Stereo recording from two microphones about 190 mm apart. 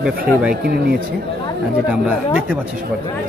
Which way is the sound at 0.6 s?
55° right (ahead or behind).